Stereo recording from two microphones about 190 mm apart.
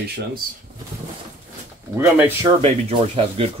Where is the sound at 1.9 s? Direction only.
15° right (ahead or behind).